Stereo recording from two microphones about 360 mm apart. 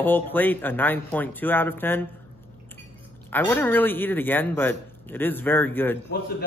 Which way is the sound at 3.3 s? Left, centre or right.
Centre.